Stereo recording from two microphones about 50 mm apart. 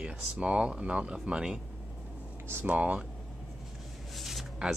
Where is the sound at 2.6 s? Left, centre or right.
Right.